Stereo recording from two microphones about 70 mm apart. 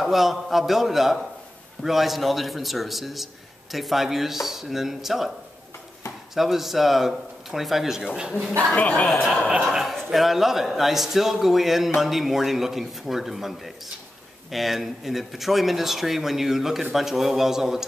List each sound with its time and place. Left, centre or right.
0.0 s a man's voice: centre
6.3 s a man's voice: centre
8.7 s speech: centre
9.5 s a man's voice: centre